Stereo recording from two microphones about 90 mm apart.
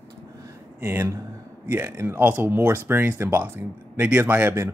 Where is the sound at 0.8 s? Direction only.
25° right (ahead or behind).